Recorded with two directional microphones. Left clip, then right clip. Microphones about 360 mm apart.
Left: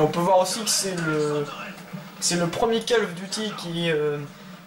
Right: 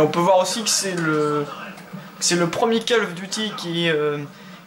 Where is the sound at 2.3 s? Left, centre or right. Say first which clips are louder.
Right 3 dB; centre.